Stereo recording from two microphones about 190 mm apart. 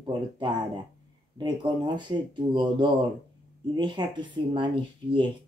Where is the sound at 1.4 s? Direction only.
25° right (ahead or behind).